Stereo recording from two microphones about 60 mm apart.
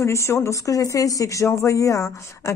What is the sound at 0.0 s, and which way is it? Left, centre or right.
Speech, left.